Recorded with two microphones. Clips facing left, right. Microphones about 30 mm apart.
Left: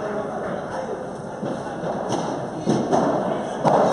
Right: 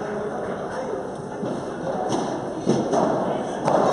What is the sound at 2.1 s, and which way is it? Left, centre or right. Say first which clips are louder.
Thump: even; centre.